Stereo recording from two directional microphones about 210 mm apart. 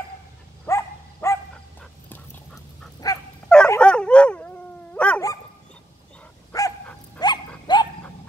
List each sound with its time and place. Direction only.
0.7 s dog: 15° left (ahead or behind)
6.5 s dog: 15° left (ahead or behind)